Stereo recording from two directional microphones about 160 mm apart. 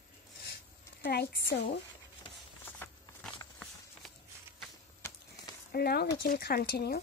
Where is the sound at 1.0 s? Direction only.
85° left.